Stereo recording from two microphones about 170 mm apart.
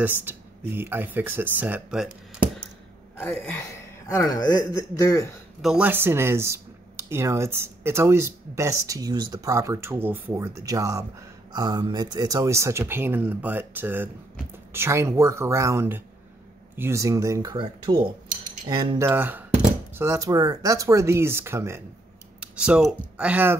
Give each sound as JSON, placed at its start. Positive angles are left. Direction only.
{"t": 0.0, "sound": "speech", "side_deg": -10}
{"t": 3.2, "sound": "speech", "side_deg": 5}
{"t": 4.2, "sound": "a man's voice", "side_deg": 20}
{"t": 5.6, "sound": "speech", "side_deg": -5}
{"t": 18.9, "sound": "speech", "side_deg": -15}